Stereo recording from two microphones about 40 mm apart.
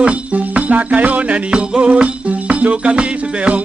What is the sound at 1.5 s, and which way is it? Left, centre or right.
Music, right.